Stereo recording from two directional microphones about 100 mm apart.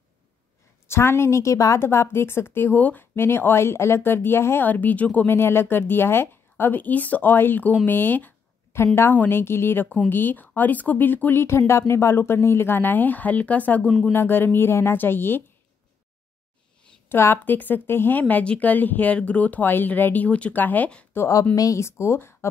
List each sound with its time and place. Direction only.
0.8 s a woman's voice: 25° left (ahead or behind); by 14.1 s 5° left (ahead or behind)
14.1 s a woman's voice: 20° left (ahead or behind)
17.1 s a woman's voice: 25° left (ahead or behind)
18.2 s speech: 10° left (ahead or behind)
21.2 s a woman's voice: 35° left (ahead or behind)